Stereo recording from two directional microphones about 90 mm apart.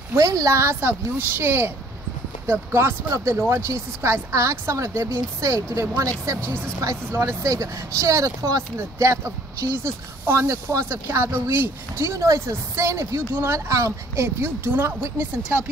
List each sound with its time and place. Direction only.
0.1 s speech: 40° right (ahead or behind); by 14.9 s 25° right (ahead or behind)